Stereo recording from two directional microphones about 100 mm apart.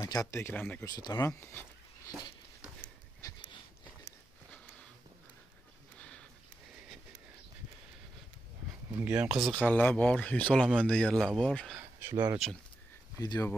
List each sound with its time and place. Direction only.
0.0 s speech: 35° left (ahead or behind)
0.8 s speech: 40° left (ahead or behind)
3.2 s dog: 35° left (ahead or behind)
5.9 s a sound: 10° left (ahead or behind)
8.9 s speech: 10° right (ahead or behind)
9.6 s speech: 15° left (ahead or behind)
11.2 s speech: 5° right (ahead or behind)
11.8 s a sound: 25° right (ahead or behind)
12.4 s speech: 5° left (ahead or behind)
13.2 s speech: 40° left (ahead or behind)